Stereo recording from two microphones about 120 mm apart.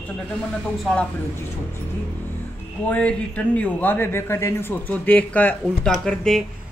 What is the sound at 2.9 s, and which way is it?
Speech, 10° left (ahead or behind).